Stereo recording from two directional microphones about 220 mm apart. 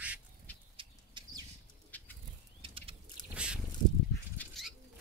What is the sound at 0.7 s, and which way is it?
Bird, 20° right (ahead or behind).